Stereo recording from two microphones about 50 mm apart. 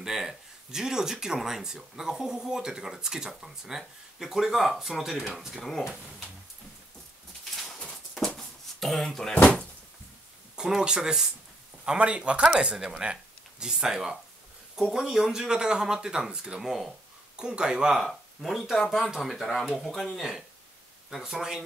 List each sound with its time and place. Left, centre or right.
0.0 s speech: centre
7.8 s a sound: centre
10.5 s a man's voice: centre
17.9 s speech: centre
21.2 s speech: centre